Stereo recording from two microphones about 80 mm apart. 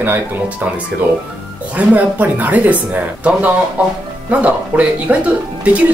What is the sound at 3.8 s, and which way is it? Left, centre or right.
Speech, centre.